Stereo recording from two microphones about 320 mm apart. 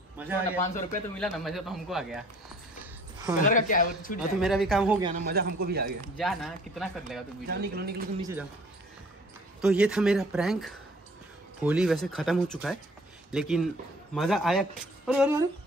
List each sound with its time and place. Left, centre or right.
0.2 s speech: centre
0.6 s speech: left
1.1 s speech: centre
3.4 s speech: left
4.4 s speech: centre
5.3 s speech: right
6.1 s speech: centre
7.4 s speech: right
8.2 s speech: centre
9.6 s speech: centre